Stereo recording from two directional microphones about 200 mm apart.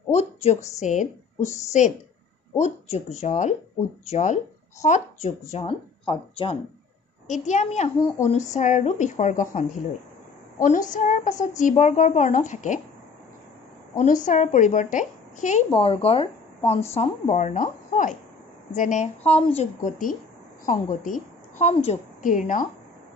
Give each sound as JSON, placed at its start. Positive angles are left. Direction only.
{"t": 0.1, "sound": "a woman's voice", "side_deg": 35}
{"t": 7.2, "sound": "a woman's voice", "side_deg": 35}
{"t": 13.9, "sound": "a woman's voice", "side_deg": 40}